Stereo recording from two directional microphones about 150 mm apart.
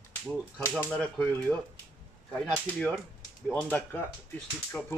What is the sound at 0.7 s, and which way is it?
Speech, 10° left (ahead or behind).